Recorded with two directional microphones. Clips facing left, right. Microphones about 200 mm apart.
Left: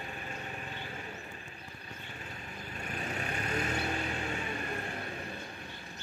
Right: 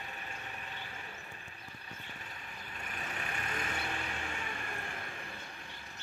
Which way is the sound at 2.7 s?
45° left (ahead or behind).